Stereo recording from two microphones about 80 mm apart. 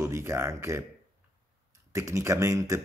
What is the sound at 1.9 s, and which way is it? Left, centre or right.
Speech, right.